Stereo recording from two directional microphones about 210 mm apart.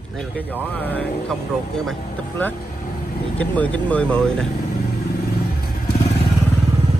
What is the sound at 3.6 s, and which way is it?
Speech, 5° left (ahead or behind).